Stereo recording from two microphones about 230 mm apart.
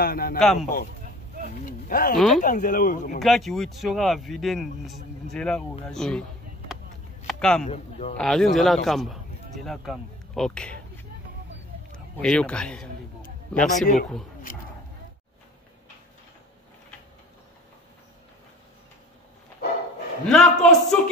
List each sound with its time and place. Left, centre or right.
0.0 s speech: left
0.4 s speech: centre
1.7 s speech: left
2.1 s speech: centre
2.4 s speech: left
3.2 s speech: centre
7.2 s speech: centre
7.6 s a man's voice: left
8.2 s speech: centre
12.2 s speech: centre
20.2 s speech: centre